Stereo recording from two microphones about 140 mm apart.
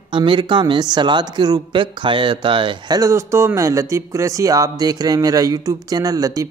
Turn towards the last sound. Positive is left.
turn(degrees=-25)  # may be behind; listen again after turning